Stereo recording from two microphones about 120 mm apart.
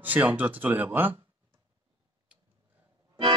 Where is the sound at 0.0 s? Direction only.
15° right (ahead or behind).